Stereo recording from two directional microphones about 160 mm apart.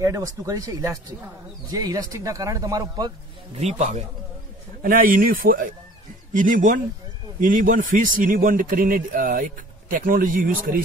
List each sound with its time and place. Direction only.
0.0 s speech: 20° right (ahead or behind)
3.5 s a man's voice: 45° right (ahead or behind)
4.8 s a man's voice: 65° right (ahead or behind)